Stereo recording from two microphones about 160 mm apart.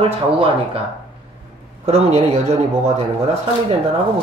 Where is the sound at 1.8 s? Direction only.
40° right (ahead or behind).